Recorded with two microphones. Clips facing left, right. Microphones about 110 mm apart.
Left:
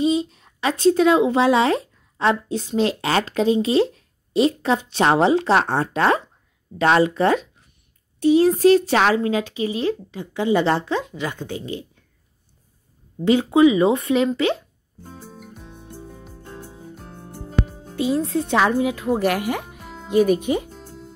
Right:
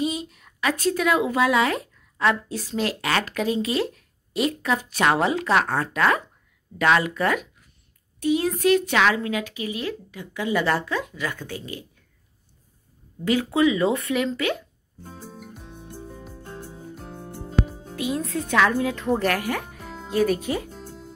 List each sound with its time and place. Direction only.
0.0 s speech: 25° left (ahead or behind)
13.2 s speech: 25° left (ahead or behind)
15.0 s music: centre (ahead or behind)
17.9 s speech: 30° left (ahead or behind)
20.7 s music: centre (ahead or behind)